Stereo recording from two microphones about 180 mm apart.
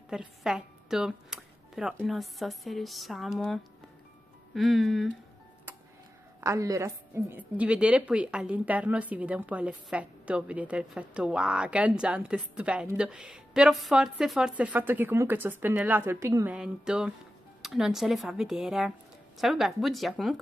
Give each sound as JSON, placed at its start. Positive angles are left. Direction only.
{"t": 0.1, "sound": "speech", "side_deg": 0}
{"t": 6.4, "sound": "a woman's voice", "side_deg": -15}